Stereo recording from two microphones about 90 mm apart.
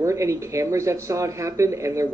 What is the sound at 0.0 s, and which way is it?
Speech, 35° right (ahead or behind).